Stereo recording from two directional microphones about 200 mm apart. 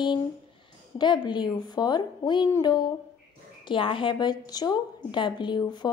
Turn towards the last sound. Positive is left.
turn(degrees=20)  # may be behind; listen again after turning